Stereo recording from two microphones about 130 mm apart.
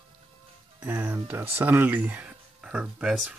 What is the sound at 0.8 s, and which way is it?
Speech, 15° right (ahead or behind).